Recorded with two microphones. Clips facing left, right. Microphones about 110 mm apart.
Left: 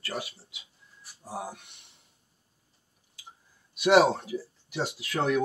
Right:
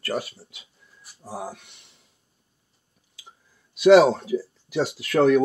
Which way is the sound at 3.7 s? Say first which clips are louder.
Right 7 dB; 90° right.